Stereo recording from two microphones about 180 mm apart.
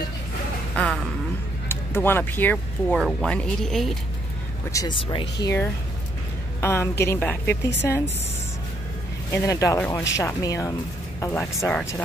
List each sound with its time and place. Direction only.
1.7 s speech: 10° left (ahead or behind)
4.6 s a woman's voice: 20° left (ahead or behind)
4.9 s speech: 30° left (ahead or behind)
5.4 s a woman's voice: 15° left (ahead or behind)
9.3 s a woman's voice: 15° left (ahead or behind)
11.3 s speech: 5° left (ahead or behind)